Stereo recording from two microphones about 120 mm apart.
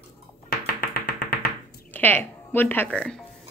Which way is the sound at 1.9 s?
15° left (ahead or behind).